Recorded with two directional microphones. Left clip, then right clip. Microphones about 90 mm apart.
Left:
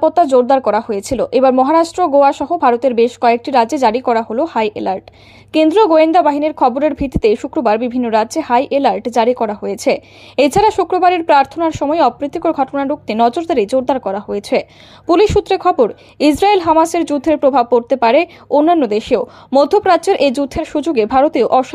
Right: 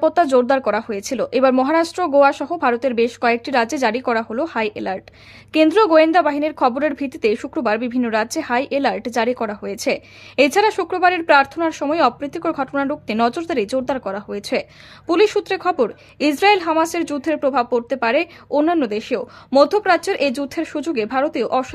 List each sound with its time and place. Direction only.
0.0 s a woman's voice: 10° left (ahead or behind); by 21.6 s 35° left (ahead or behind)